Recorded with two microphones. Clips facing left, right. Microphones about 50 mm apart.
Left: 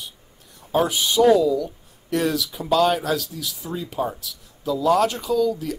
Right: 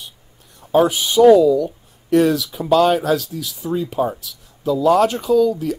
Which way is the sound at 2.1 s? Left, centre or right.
Right.